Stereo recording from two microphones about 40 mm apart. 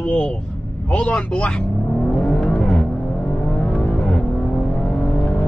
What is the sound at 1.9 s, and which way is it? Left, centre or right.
Vehicle, left.